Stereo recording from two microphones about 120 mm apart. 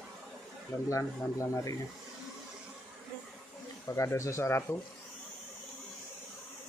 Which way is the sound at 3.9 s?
25° left (ahead or behind).